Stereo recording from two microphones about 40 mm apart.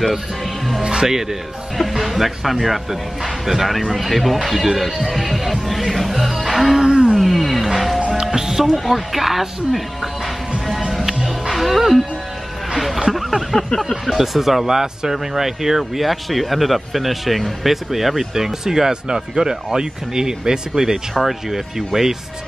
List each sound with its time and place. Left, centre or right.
0.8 s speech: centre
1.8 s speech: centre
6.6 s music: centre
6.9 s a sound: right
7.2 s a sound: centre
8.2 s music: centre
8.6 s speech: centre
11.2 s music: centre
12.7 s speech: centre
13.1 s a sound: centre
13.7 s speech: centre
14.1 s speech: centre
21.1 s speech: centre